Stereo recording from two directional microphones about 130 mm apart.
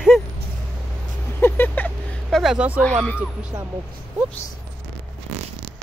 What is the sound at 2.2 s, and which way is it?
Speech, centre (ahead or behind).